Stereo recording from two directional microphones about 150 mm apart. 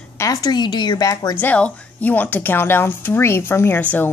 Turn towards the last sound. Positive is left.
turn(degrees=10)  # may be behind; listen again after turning